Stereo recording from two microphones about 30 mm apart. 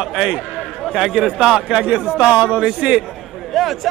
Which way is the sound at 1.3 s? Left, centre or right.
Centre.